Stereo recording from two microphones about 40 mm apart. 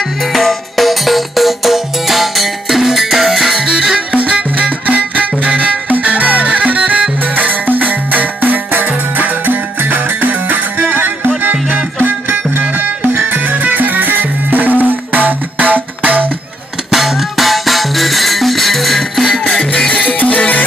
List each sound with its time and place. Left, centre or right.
0.2 s music: centre
3.5 s music: centre
4.1 s music: right
13.4 s music: right
16.9 s music: centre
19.4 s music: centre
19.9 s music: left